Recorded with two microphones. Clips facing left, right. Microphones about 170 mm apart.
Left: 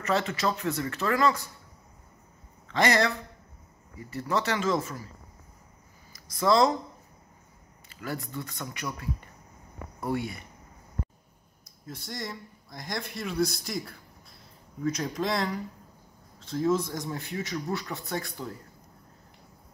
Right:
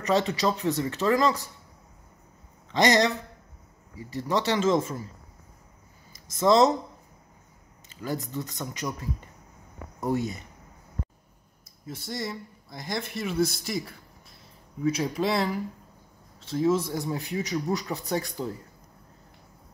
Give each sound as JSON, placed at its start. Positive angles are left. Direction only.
{"t": 0.0, "sound": "speech", "side_deg": -20}
{"t": 2.7, "sound": "speech", "side_deg": -20}
{"t": 6.3, "sound": "speech", "side_deg": -20}
{"t": 8.1, "sound": "speech", "side_deg": -20}
{"t": 9.9, "sound": "speech", "side_deg": -20}
{"t": 11.8, "sound": "speech", "side_deg": -5}
{"t": 18.4, "sound": "speech", "side_deg": -30}